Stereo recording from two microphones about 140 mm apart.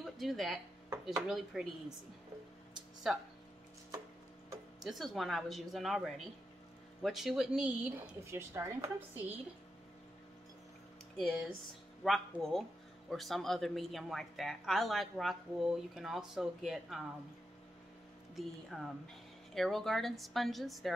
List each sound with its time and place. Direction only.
0.0 s a woman's voice: centre (ahead or behind)
3.1 s a woman's voice: 5° right (ahead or behind)
4.8 s a woman's voice: centre (ahead or behind)
8.2 s speech: 20° right (ahead or behind)
11.1 s a woman's voice: centre (ahead or behind)
18.3 s a woman's voice: centre (ahead or behind)